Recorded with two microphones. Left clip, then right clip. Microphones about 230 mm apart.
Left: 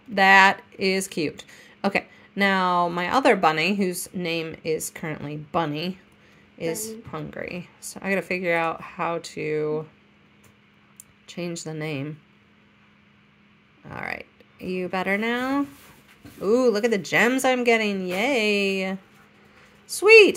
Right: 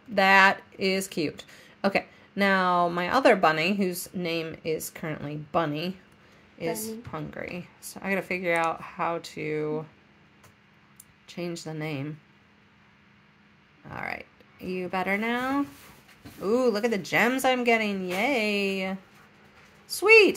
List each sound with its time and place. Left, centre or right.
0.1 s a woman's voice: centre
11.2 s a woman's voice: centre
13.8 s a woman's voice: centre